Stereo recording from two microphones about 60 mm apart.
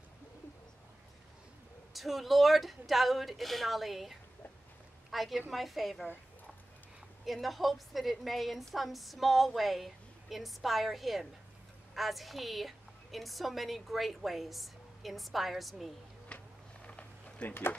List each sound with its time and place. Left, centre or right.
2.0 s a woman's voice: centre
5.1 s a woman's voice: centre
7.2 s a woman's voice: centre
16.3 s a sound: centre